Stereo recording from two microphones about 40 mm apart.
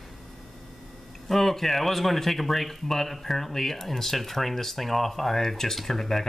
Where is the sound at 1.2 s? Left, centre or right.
Centre.